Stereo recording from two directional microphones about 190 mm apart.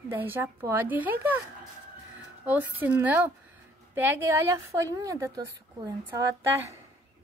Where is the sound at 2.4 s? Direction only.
10° right (ahead or behind).